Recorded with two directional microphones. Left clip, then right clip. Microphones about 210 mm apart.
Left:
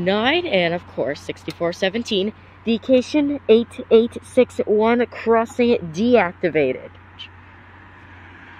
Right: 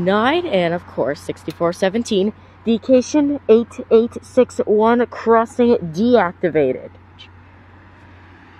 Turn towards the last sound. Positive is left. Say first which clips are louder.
# right 2 dB
turn(degrees=0)  # may be behind; listen again after turning